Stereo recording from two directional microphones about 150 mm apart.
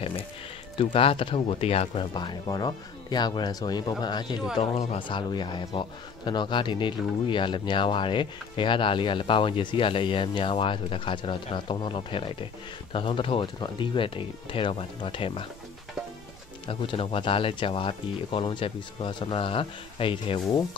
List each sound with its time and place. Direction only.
0.7 s speech: 40° left (ahead or behind)
4.6 s speech: 40° left (ahead or behind)
16.6 s speech: 35° left (ahead or behind)